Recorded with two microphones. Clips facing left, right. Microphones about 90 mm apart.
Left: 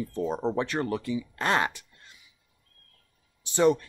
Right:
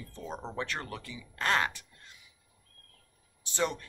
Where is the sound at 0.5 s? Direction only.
20° left (ahead or behind).